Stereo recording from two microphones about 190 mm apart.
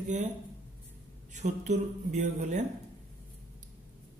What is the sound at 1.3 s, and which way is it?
A man's voice, 40° right (ahead or behind).